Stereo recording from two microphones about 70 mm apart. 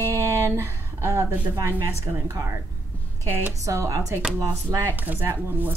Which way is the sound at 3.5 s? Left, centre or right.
Right.